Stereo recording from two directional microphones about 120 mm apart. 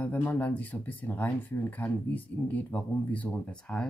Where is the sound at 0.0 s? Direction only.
15° left (ahead or behind).